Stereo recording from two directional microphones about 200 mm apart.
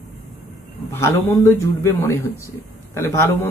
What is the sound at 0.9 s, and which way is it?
Speech, 10° left (ahead or behind).